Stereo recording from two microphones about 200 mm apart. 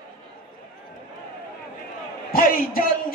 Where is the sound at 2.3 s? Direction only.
45° left (ahead or behind).